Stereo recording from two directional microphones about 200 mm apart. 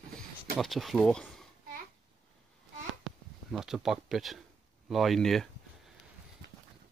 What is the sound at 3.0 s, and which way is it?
Speech, centre (ahead or behind).